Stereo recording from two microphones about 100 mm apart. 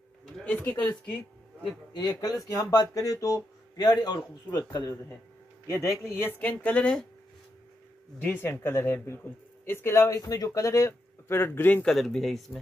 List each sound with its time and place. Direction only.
0.4 s speech: 15° left (ahead or behind)
2.0 s speech: 40° left (ahead or behind)
3.9 s a man's voice: 45° left (ahead or behind)
5.9 s speech: 25° left (ahead or behind)
8.2 s speech: 20° left (ahead or behind)
10.1 s speech: 35° left (ahead or behind); by 11.8 s 20° left (ahead or behind)
11.8 s speech: 5° left (ahead or behind)